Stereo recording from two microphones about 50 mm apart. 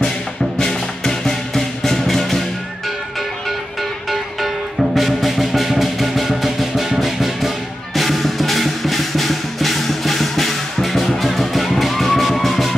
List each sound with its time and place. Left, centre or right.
0.6 s music: centre
4.9 s music: centre